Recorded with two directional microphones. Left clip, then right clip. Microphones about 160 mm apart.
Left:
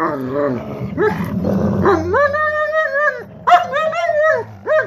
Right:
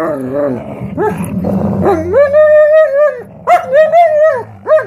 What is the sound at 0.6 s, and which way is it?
Dog, 25° right (ahead or behind).